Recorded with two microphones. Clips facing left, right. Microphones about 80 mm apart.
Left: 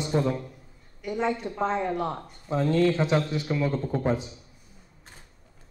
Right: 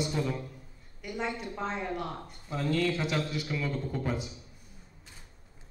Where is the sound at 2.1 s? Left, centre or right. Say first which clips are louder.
Left 8 dB; left.